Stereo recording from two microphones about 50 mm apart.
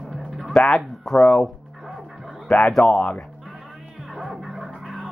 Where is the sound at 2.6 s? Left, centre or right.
Centre.